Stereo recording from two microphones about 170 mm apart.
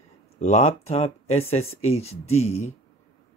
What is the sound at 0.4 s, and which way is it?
Speech, 40° left (ahead or behind).